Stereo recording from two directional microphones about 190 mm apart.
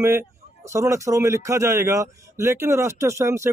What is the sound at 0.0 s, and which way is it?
Speech, 15° right (ahead or behind).